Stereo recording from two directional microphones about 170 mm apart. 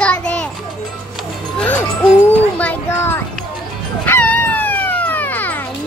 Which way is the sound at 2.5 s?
10° left (ahead or behind).